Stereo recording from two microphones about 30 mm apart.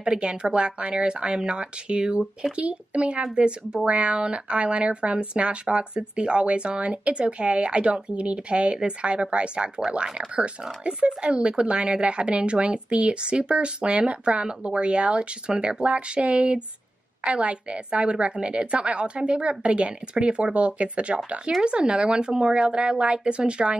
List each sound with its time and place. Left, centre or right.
0.0 s speech: right
3.8 s speech: right
21.6 s speech: right